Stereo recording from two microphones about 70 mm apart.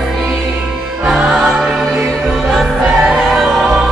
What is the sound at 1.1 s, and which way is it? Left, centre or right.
Music, centre.